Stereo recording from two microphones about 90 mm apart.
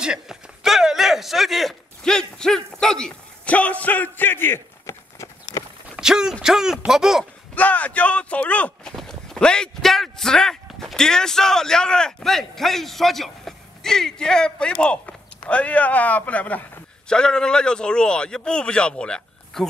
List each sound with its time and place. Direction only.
0.0 s speech: 5° right (ahead or behind); by 5.6 s 35° left (ahead or behind)
5.9 s a sound: 5° right (ahead or behind)
6.4 s speech: 5° right (ahead or behind)
7.5 s speech: 15° left (ahead or behind)
8.9 s speech: 5° left (ahead or behind)